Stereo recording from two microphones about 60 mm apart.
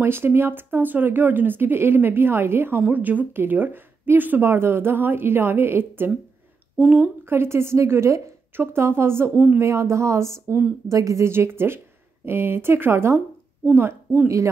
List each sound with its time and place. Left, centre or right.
0.0 s speech: right
2.9 s speech: right
6.8 s a woman's voice: right
7.2 s a woman's voice: right
10.9 s a woman's voice: right
11.2 s a woman's voice: right